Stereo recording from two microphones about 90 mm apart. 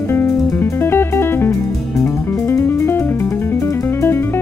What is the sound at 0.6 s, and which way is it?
Music, 25° left (ahead or behind).